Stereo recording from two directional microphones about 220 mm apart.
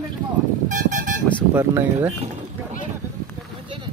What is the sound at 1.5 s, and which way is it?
Speech, 10° right (ahead or behind).